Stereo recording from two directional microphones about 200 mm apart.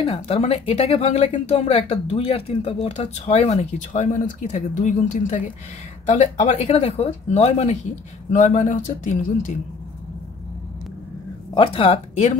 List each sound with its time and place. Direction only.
0.0 s speech: 30° left (ahead or behind)
11.5 s speech: 30° left (ahead or behind)